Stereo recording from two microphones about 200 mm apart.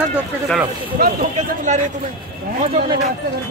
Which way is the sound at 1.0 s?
40° right (ahead or behind).